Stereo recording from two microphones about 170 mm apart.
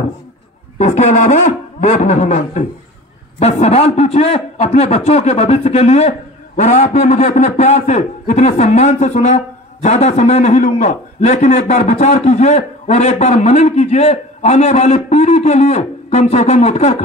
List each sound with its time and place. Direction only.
0.7 s a man's voice: 40° left (ahead or behind)